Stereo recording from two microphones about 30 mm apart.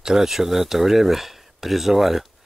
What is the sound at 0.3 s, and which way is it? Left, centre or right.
Speech, centre.